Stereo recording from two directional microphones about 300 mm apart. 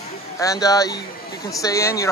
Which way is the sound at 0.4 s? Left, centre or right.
Centre.